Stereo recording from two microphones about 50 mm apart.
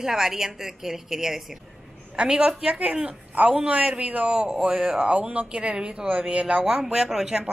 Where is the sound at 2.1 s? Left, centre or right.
Centre.